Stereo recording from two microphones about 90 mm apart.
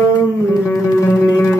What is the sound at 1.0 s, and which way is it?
Music, 35° left (ahead or behind).